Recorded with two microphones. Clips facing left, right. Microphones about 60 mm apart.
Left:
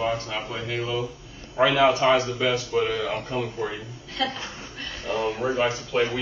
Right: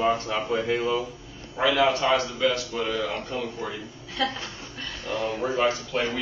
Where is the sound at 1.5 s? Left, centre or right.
Centre.